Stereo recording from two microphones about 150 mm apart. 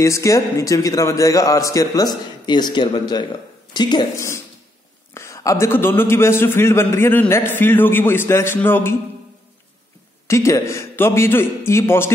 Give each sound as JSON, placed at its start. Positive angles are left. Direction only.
{"t": 0.0, "sound": "a man's voice", "side_deg": 20}
{"t": 5.1, "sound": "a man's voice", "side_deg": 20}
{"t": 10.2, "sound": "a man's voice", "side_deg": 20}